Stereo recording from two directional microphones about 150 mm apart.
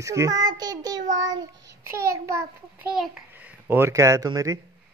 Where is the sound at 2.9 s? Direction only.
Centre (ahead or behind).